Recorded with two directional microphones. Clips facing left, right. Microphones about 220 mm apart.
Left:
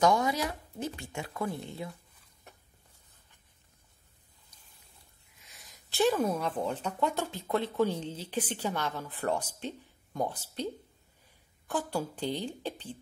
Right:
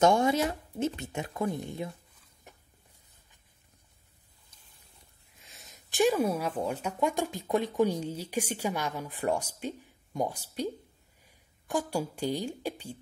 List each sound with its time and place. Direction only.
0.0 s a woman's voice: 25° right (ahead or behind)
5.6 s speech: 20° right (ahead or behind)